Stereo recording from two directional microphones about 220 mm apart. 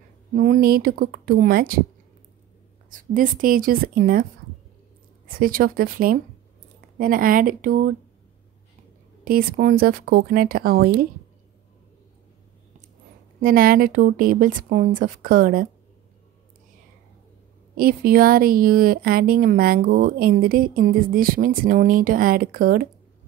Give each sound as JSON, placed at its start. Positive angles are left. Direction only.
{"t": 0.4, "sound": "a woman's voice", "side_deg": -40}
{"t": 2.9, "sound": "a woman's voice", "side_deg": -35}
{"t": 5.4, "sound": "a woman's voice", "side_deg": -40}
{"t": 9.2, "sound": "a woman's voice", "side_deg": -40}
{"t": 13.4, "sound": "a woman's voice", "side_deg": -40}
{"t": 17.7, "sound": "a woman's voice", "side_deg": -40}